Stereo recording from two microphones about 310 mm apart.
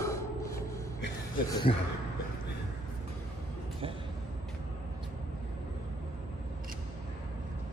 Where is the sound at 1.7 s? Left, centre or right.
Left.